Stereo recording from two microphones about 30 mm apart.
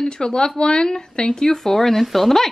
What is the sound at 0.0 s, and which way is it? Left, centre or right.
A woman's voice, left.